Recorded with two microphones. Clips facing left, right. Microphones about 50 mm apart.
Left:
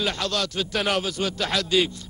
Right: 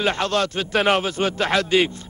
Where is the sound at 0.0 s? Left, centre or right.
Right.